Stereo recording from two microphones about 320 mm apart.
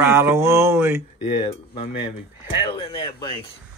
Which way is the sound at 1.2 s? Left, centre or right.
Centre.